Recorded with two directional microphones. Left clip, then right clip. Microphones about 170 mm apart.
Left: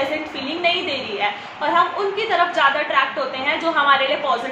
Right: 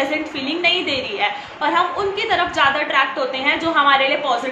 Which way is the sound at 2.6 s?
20° right (ahead or behind).